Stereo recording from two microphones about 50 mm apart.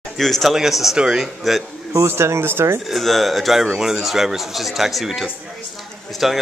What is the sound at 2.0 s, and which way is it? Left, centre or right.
Speech, right.